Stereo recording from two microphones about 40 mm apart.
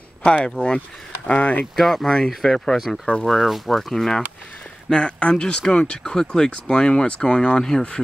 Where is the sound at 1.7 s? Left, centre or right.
Centre.